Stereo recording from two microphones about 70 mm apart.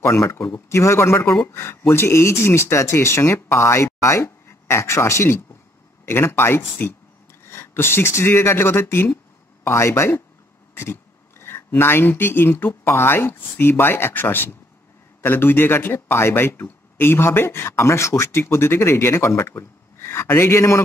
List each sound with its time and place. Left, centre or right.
0.0 s speech: left